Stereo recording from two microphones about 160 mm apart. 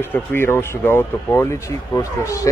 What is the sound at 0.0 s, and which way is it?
Speech, 15° left (ahead or behind).